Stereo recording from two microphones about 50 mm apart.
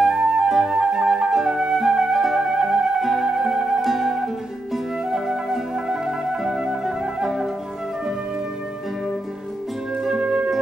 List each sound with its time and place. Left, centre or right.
0.0 s flute: centre
0.5 s flute: centre
0.7 s flute: centre
3.1 s music: centre
5.1 s flute: centre
10.2 s music: centre